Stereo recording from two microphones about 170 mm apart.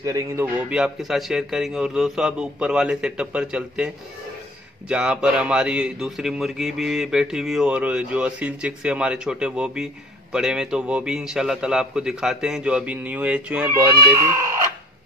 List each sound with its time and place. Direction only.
0.0 s speech: 20° right (ahead or behind)
0.7 s a man's voice: 5° right (ahead or behind)